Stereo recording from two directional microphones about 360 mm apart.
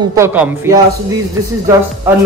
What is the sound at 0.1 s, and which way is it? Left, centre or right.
Speech, centre.